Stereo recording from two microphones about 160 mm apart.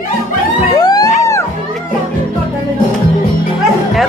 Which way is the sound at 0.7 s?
25° left (ahead or behind).